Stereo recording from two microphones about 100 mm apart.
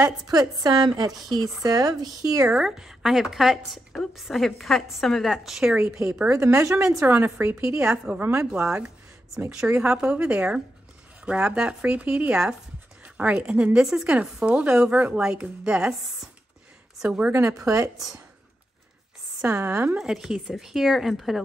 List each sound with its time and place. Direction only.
0.3 s a woman's voice: 40° right (ahead or behind)
2.5 s a woman's voice: 5° right (ahead or behind)
6.3 s a woman's voice: 30° right (ahead or behind)
7.8 s a woman's voice: 10° right (ahead or behind)
8.2 s a woman's voice: 25° right (ahead or behind); by 17.3 s 5° right (ahead or behind)
17.3 s a woman's voice: 30° right (ahead or behind)
19.4 s a woman's voice: 25° right (ahead or behind)
20.0 s a woman's voice: 5° right (ahead or behind)